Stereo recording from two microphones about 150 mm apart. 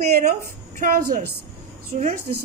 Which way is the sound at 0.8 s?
85° right.